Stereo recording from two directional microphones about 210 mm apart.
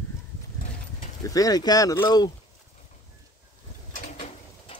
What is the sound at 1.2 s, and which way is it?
Speech, 15° left (ahead or behind).